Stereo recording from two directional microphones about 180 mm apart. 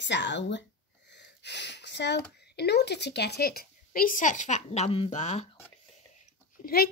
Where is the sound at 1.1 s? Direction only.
75° left (ahead or behind).